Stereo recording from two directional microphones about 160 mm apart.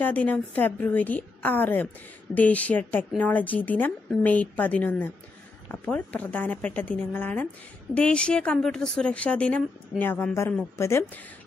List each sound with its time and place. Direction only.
0.0 s speech: 10° left (ahead or behind)